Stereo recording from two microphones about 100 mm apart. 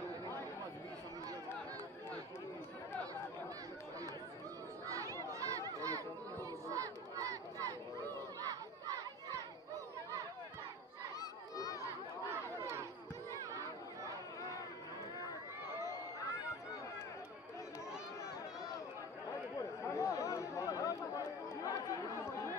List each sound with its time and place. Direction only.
4.8 s a sound: 35° right (ahead or behind)
6.7 s crowd: 35° right (ahead or behind)
11.1 s crowd: 40° left (ahead or behind)
12.3 s crowd: 25° right (ahead or behind)
19.8 s chatter: 30° left (ahead or behind)